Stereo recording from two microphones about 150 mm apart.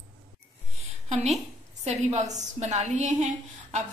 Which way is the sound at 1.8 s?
50° right (ahead or behind).